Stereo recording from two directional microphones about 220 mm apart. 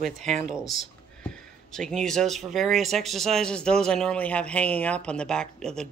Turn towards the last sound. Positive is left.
turn(degrees=5)  # may be behind; listen again after turning